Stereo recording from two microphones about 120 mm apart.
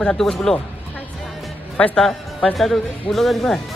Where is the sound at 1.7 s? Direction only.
10° left (ahead or behind).